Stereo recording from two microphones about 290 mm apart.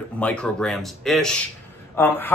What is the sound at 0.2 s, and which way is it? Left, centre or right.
Speech, centre.